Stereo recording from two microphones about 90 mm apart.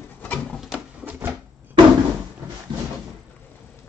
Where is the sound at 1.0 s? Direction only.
20° right (ahead or behind).